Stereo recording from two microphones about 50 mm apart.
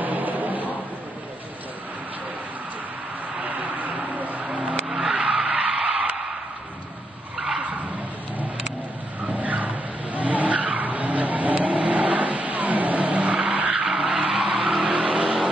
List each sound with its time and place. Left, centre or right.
0.0 s a sound: right
3.4 s vehicle: right
4.8 s vehicle: centre
5.1 s skidding: right
7.3 s vehicle: centre
9.3 s vehicle: right
13.8 s vehicle: centre